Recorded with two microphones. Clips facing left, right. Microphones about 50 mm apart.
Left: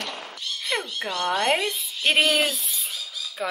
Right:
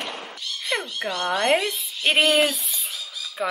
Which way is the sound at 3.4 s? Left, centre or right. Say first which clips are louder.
Right 3 dB; centre.